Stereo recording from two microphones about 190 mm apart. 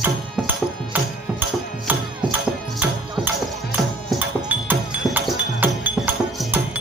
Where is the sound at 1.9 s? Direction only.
10° right (ahead or behind).